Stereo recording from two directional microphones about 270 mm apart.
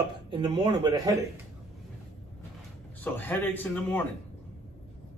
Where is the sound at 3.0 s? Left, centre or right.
Centre.